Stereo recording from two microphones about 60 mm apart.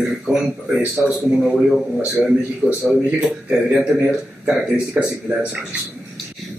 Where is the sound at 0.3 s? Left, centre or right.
Centre.